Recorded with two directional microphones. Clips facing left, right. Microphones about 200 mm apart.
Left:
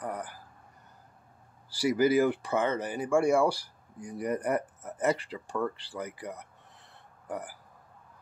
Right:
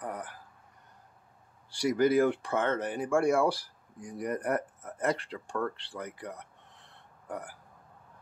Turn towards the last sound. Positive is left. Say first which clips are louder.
# left 2 dB
turn(degrees=5)  # may be behind; listen again after turning